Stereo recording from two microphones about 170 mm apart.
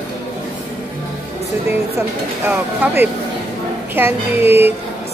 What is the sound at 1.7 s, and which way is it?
Speech, 15° right (ahead or behind).